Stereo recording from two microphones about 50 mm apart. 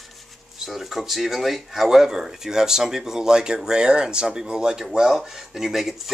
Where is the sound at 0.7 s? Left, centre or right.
Centre.